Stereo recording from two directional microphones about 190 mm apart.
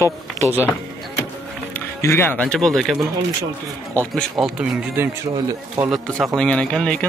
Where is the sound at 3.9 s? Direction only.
Centre (ahead or behind).